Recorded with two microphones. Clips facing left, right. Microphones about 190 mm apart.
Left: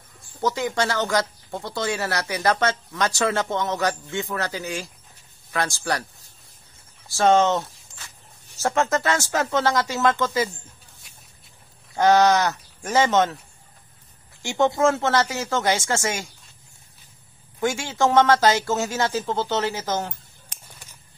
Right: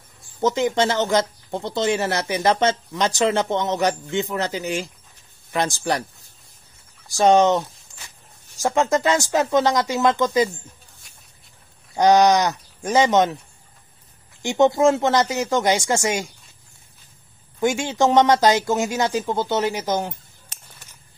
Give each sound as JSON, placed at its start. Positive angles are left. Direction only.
{"t": 0.4, "sound": "speech", "side_deg": -20}
{"t": 7.1, "sound": "speech", "side_deg": -15}
{"t": 11.9, "sound": "speech", "side_deg": -15}
{"t": 14.4, "sound": "speech", "side_deg": -20}
{"t": 17.6, "sound": "speech", "side_deg": -15}